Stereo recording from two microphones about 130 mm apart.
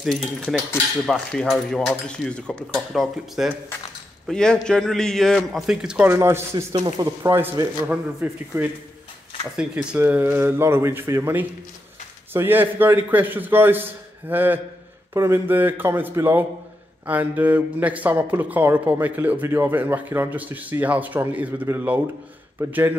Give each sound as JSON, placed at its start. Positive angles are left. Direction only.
{"t": 0.0, "sound": "cutlery", "side_deg": 0}
{"t": 6.1, "sound": "speech", "side_deg": -20}
{"t": 7.9, "sound": "speech", "side_deg": -10}